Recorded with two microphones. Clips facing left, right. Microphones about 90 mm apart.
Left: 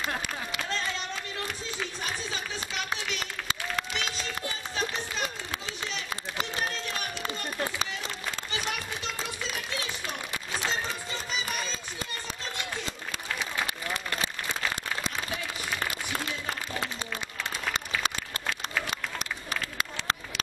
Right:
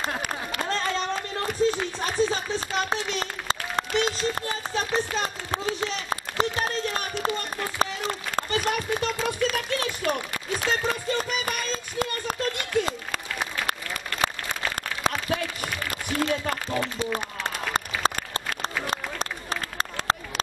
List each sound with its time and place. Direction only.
0.2 s a sound: 45° right (ahead or behind)
17.1 s applause: 45° right (ahead or behind)
18.9 s run: 35° right (ahead or behind)